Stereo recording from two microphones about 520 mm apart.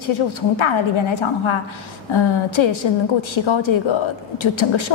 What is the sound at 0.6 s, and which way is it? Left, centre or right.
A woman's voice, left.